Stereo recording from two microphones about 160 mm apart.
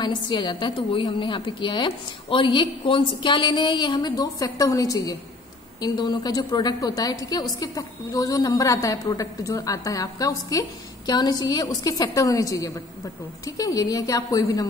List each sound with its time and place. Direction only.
0.0 s a woman's voice: 30° left (ahead or behind)